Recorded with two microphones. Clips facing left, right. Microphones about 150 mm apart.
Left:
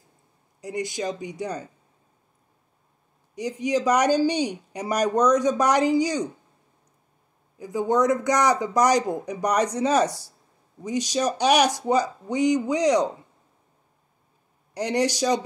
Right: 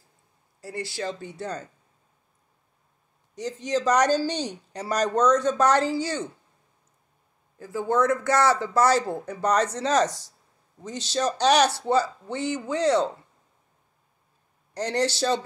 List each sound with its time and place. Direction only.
0.6 s speech: 20° left (ahead or behind)
3.3 s speech: 10° left (ahead or behind)
7.5 s speech: 15° left (ahead or behind)
14.7 s speech: 10° left (ahead or behind)